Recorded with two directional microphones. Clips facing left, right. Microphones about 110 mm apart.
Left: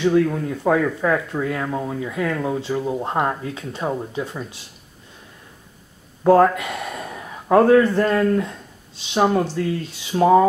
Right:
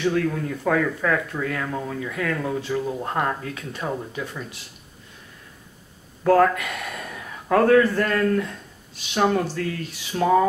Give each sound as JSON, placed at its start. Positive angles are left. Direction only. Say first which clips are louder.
{"t": 0.0, "sound": "speech", "louder": "left 5 dB", "side_deg": 20}
{"t": 6.2, "sound": "a man's voice", "louder": "left 3 dB", "side_deg": 20}